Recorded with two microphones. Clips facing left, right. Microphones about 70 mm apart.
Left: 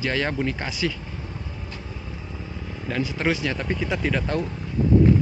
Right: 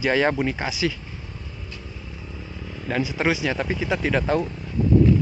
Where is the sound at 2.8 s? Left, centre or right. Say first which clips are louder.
Right 2 dB; centre.